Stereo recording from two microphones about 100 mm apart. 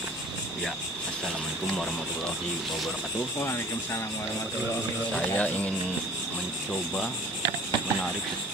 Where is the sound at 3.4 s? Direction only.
25° left (ahead or behind).